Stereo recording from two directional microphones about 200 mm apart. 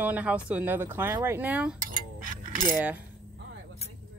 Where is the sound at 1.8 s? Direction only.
40° right (ahead or behind).